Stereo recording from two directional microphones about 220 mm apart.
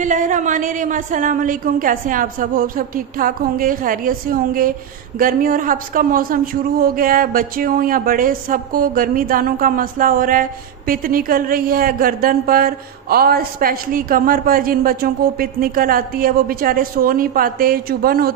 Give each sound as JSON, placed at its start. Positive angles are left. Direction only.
{"t": 0.0, "sound": "speech", "side_deg": -35}